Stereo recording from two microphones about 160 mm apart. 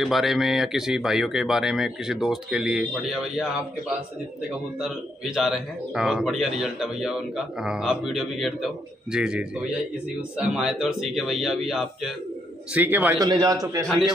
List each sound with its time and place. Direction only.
0.0 s a man's voice: centre (ahead or behind)
4.7 s a man's voice: centre (ahead or behind)
13.2 s a man's voice: 25° right (ahead or behind)
13.8 s a man's voice: centre (ahead or behind)